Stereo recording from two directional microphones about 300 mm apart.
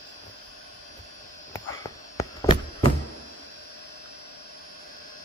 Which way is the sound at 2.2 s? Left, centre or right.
Centre.